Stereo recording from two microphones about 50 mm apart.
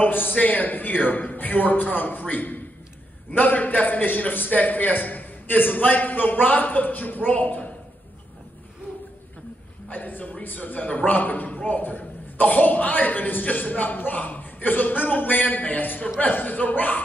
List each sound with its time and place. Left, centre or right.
0.0 s a man's voice: left
9.8 s a man's voice: left